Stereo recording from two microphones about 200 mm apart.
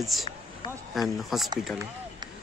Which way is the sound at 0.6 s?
20° left (ahead or behind).